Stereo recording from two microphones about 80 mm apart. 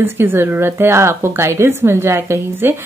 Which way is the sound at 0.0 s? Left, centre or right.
Right.